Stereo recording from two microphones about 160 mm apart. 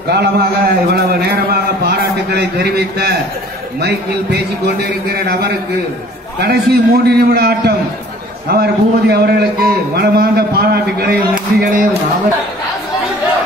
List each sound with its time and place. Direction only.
0.1 s a man's voice: 80° right
5.1 s a man's voice: 80° right; by 11.8 s 65° right (ahead or behind)